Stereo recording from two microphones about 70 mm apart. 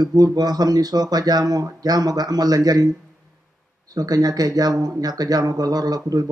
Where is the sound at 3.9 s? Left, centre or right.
Right.